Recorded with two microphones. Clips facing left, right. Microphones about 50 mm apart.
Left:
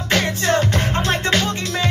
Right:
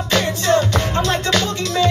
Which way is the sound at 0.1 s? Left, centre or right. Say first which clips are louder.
Right 1 dB; left.